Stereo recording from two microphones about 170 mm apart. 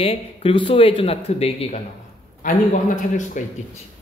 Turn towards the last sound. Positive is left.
turn(degrees=45)  # may be behind; listen again after turning